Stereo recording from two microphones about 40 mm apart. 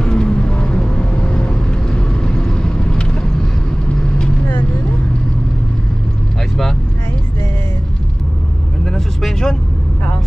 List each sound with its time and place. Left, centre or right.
0.0 s vehicle: left
8.8 s vehicle: centre